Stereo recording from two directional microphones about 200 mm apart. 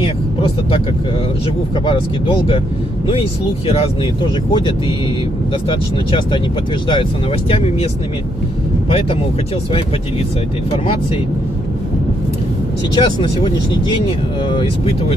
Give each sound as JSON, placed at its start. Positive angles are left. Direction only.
{"t": 1.9, "sound": "speech", "side_deg": 25}
{"t": 3.6, "sound": "speech", "side_deg": 30}
{"t": 12.9, "sound": "speech", "side_deg": 25}